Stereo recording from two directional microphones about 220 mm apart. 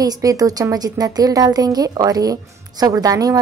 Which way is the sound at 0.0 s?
15° right (ahead or behind).